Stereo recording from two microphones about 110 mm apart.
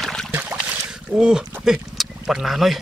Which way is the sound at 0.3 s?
15° right (ahead or behind).